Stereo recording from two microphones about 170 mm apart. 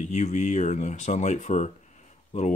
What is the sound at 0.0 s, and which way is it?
Speech, 40° left (ahead or behind).